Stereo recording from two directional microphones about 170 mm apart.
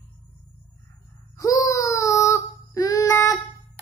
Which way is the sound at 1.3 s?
20° left (ahead or behind).